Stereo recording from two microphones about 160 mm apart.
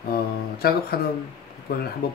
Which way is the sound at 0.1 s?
75° left (ahead or behind).